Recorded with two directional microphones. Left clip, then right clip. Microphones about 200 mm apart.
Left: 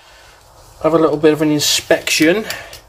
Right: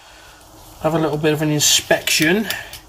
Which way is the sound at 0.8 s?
40° left (ahead or behind).